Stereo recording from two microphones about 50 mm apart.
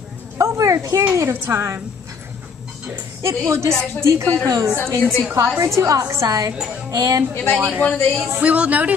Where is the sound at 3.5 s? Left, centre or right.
Right.